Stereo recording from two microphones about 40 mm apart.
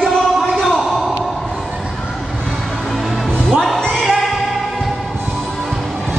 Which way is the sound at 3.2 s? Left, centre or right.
Centre.